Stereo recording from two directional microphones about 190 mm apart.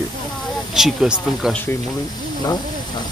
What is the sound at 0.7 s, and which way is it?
Speech, centre (ahead or behind).